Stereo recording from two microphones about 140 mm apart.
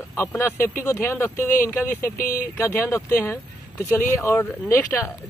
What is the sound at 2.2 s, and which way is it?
Speech, 90° left.